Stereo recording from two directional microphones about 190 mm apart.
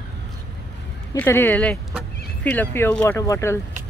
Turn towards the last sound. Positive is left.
turn(degrees=15)  # may be behind; listen again after turning